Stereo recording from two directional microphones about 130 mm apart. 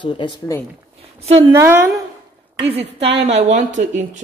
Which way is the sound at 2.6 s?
50° right (ahead or behind).